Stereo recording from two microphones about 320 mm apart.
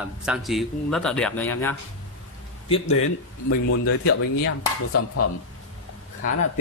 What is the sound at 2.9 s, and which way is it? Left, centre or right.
Speech, left.